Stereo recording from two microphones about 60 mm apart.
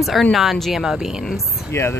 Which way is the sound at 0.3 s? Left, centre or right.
Centre.